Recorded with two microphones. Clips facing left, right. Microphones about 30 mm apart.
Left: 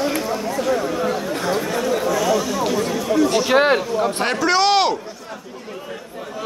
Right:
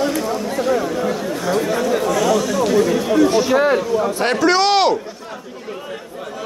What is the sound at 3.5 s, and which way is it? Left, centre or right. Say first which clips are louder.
Speech: even; left.